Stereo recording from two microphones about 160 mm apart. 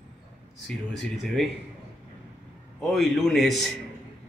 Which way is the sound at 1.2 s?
Centre (ahead or behind).